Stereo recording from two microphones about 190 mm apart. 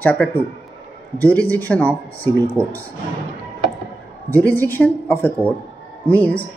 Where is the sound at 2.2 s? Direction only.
30° left (ahead or behind).